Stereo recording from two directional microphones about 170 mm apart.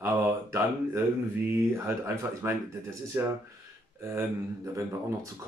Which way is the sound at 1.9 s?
15° right (ahead or behind).